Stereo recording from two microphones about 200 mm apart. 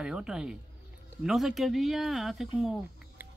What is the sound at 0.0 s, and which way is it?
Speech, 5° right (ahead or behind).